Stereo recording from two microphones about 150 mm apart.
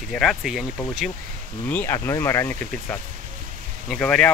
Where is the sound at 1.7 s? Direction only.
10° left (ahead or behind).